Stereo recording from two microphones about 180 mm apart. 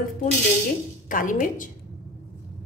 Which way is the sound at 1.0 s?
50° left (ahead or behind).